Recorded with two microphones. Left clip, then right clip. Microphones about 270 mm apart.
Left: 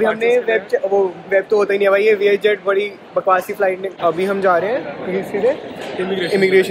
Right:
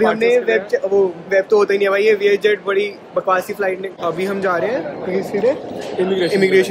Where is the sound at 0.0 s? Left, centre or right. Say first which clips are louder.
Right 1 dB; centre.